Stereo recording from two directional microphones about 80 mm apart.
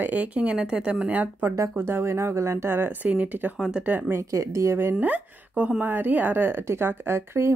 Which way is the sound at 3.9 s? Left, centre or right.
Right.